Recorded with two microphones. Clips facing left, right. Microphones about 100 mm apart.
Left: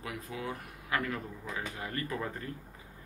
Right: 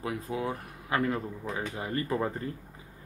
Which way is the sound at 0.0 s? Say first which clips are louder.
Right 7 dB; 30° right (ahead or behind).